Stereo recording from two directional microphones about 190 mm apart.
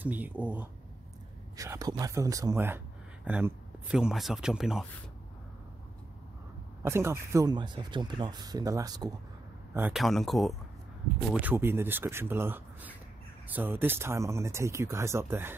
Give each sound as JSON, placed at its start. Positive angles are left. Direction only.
{"t": 0.0, "sound": "speech", "side_deg": -10}
{"t": 6.8, "sound": "speech", "side_deg": -15}
{"t": 9.8, "sound": "speech", "side_deg": -5}
{"t": 11.3, "sound": "speech", "side_deg": -10}